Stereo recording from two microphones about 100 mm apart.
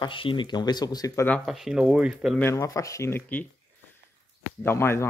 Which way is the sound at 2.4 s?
30° left (ahead or behind).